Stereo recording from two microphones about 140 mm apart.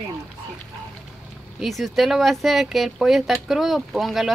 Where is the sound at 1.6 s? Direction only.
Centre (ahead or behind).